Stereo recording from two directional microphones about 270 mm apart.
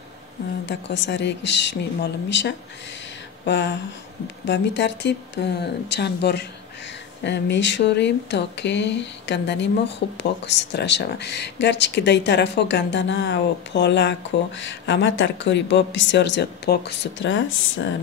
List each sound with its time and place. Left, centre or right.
0.7 s speech: left